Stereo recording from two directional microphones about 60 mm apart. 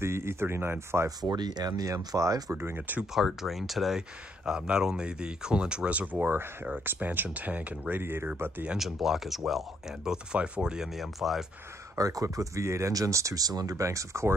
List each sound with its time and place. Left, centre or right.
0.0 s speech: right
1.8 s speech: right
2.5 s speech: right
3.2 s speech: centre
4.5 s speech: centre
6.2 s speech: right
8.0 s speech: right
8.7 s speech: centre
12.0 s speech: right
13.8 s speech: right